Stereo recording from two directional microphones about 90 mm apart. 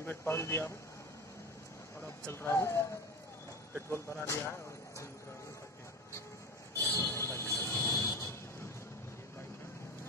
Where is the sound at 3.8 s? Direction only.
30° left (ahead or behind).